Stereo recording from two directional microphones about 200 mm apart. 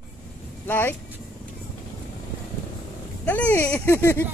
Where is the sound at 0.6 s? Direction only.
10° left (ahead or behind).